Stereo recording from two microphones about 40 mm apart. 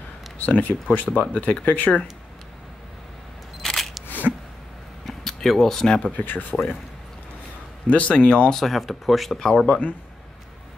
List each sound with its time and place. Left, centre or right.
0.4 s speech: left
3.6 s single-lens reflex camera: centre
5.0 s a sound: centre
6.1 s speech: left
6.5 s speech: centre
7.8 s speech: left
8.5 s speech: centre
9.4 s speech: centre
9.7 s speech: left